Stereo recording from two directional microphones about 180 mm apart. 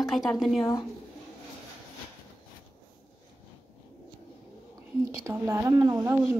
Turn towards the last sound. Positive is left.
turn(degrees=-15)  # may be behind; listen again after turning